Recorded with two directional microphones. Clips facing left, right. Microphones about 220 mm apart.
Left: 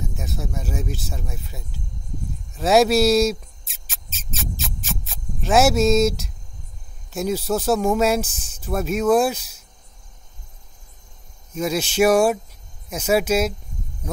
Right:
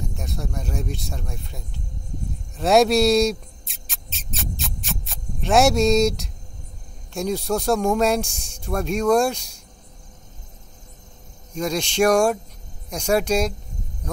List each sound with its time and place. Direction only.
0.0 s speech: centre (ahead or behind)
2.5 s mouse: centre (ahead or behind)
7.1 s speech: 5° left (ahead or behind)
11.5 s speech: 5° left (ahead or behind)